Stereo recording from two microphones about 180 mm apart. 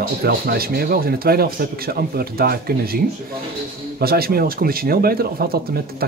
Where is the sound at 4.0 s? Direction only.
55° right (ahead or behind).